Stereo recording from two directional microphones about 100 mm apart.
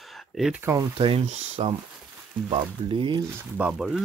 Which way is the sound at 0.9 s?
70° right (ahead or behind).